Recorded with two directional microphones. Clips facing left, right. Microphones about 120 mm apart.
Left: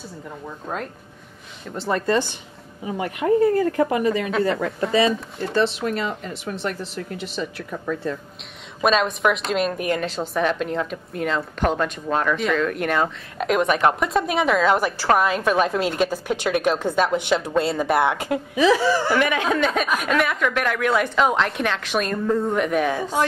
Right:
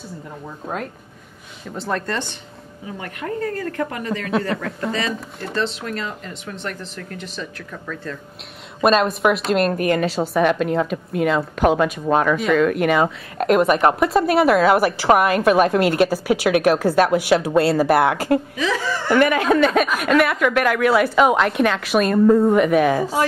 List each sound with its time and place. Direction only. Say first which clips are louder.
1.7 s a woman's voice: left 3 dB; centre (ahead or behind)
3.0 s a woman's voice: left 8 dB; 15° left (ahead or behind)
7.7 s speech: left 5 dB; 15° left (ahead or behind)
8.8 s a woman's voice: right 3 dB; 5° right (ahead or behind)
18.6 s a woman's voice: left 5 dB; 10° left (ahead or behind)